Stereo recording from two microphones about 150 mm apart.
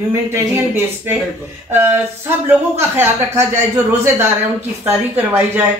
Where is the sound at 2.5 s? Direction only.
15° right (ahead or behind).